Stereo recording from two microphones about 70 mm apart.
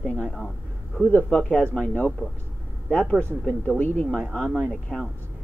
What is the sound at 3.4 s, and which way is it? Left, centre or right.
Speech, left.